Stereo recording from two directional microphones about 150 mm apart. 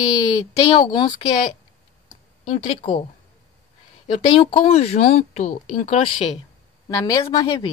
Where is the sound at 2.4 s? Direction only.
35° left (ahead or behind).